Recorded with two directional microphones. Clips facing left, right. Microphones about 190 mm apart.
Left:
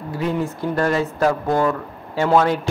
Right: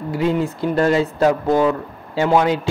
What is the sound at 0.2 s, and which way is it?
A man's voice, 25° right (ahead or behind).